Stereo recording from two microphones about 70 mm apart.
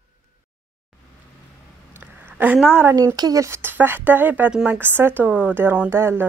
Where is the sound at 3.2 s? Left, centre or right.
Right.